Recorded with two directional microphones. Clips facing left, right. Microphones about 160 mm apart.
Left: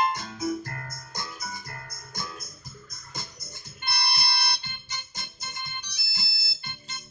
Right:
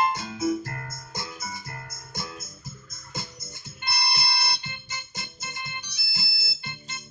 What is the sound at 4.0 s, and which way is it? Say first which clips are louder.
Music: right 1 dB; 25° right (ahead or behind).